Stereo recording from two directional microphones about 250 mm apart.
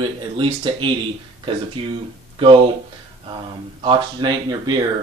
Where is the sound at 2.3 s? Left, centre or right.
Right.